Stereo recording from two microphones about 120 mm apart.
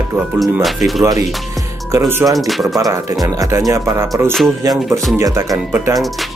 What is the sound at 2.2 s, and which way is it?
Speech, 30° right (ahead or behind).